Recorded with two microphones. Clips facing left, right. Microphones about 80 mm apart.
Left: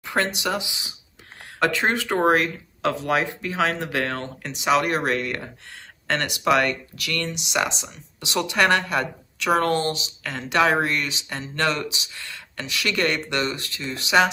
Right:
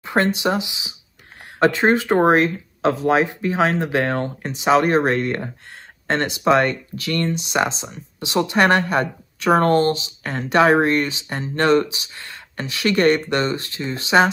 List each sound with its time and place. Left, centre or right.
0.0 s speech: right